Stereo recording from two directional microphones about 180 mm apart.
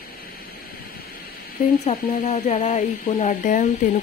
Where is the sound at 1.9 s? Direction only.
40° left (ahead or behind).